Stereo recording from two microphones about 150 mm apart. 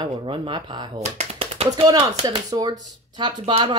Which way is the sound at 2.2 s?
25° right (ahead or behind).